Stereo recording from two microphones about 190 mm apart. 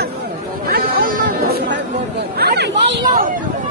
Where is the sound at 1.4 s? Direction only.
60° right (ahead or behind).